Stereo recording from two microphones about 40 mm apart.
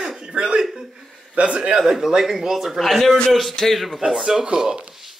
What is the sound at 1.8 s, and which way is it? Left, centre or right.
Speech, centre.